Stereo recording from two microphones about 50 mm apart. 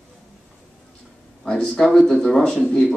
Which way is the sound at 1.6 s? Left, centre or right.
Centre.